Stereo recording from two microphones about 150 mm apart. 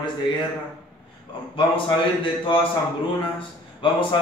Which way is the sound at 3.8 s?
35° left (ahead or behind).